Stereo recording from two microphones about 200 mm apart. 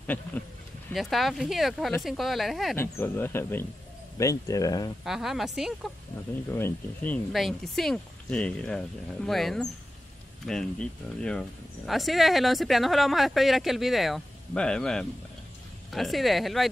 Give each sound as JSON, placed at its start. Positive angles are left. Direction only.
{"t": 0.0, "sound": "speech", "side_deg": 10}
{"t": 2.8, "sound": "speech", "side_deg": 10}
{"t": 5.0, "sound": "speech", "side_deg": 0}
{"t": 6.5, "sound": "speech", "side_deg": 10}